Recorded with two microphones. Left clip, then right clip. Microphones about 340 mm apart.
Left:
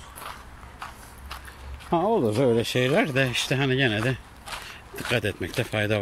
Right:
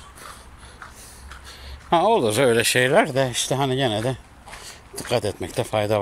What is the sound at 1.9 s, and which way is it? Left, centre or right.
Speech, right.